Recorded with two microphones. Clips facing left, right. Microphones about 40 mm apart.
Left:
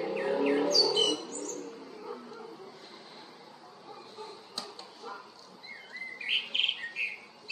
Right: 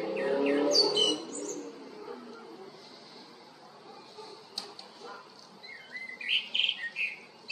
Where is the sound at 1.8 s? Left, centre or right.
Centre.